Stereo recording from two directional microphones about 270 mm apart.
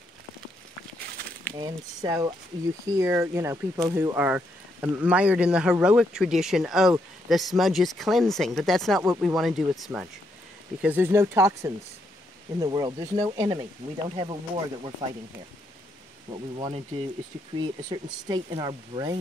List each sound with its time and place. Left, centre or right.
1.0 s a sound: right
1.6 s speech: centre
16.5 s speech: centre